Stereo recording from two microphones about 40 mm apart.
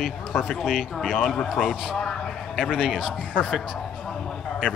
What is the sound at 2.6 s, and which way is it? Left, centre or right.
Speech, centre.